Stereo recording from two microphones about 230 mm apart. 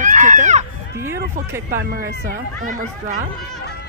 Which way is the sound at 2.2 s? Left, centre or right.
Right.